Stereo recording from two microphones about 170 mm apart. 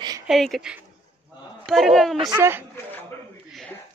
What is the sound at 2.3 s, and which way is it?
Speech, 15° right (ahead or behind).